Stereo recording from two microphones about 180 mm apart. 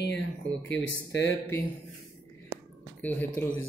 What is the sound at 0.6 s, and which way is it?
Speech, 90° left.